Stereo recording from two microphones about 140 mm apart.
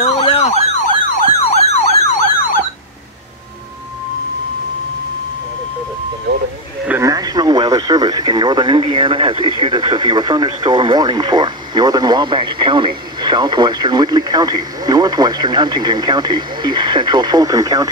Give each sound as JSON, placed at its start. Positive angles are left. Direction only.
{"t": 0.0, "sound": "emergency vehicle", "side_deg": 50}
{"t": 6.9, "sound": "speech", "side_deg": -25}